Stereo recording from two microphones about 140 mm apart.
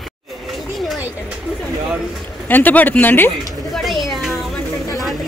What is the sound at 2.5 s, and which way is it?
Speech, 10° left (ahead or behind).